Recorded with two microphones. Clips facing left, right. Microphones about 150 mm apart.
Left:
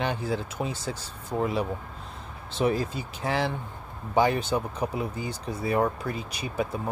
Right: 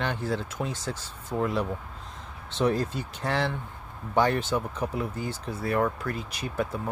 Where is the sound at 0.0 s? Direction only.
10° left (ahead or behind).